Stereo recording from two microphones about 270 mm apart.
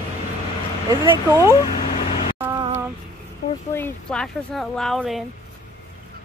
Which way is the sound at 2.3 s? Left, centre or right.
Centre.